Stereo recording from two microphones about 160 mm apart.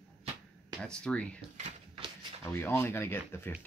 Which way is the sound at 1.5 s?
45° right (ahead or behind).